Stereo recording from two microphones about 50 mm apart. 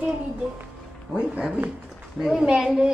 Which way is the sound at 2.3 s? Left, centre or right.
Centre.